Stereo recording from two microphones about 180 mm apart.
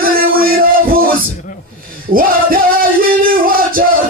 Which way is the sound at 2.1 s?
55° right (ahead or behind).